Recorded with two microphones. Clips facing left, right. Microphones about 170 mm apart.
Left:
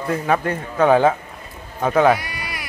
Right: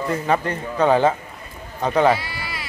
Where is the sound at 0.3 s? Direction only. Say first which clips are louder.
Left 1 dB; 10° left (ahead or behind).